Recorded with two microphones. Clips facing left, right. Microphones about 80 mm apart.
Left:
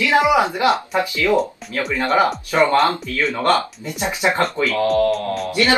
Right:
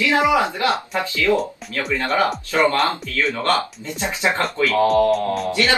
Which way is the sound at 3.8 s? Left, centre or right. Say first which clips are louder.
Left 2 dB; centre.